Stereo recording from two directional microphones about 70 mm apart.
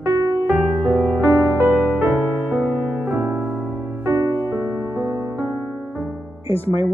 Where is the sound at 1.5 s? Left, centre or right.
Right.